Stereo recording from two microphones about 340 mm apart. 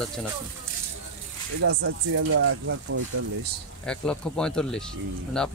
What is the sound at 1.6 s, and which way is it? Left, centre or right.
Speech, right.